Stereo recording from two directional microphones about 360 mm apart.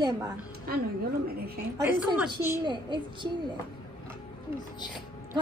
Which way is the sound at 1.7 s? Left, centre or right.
Centre.